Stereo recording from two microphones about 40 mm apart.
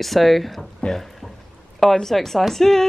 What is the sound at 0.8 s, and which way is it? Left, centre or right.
Speech, left.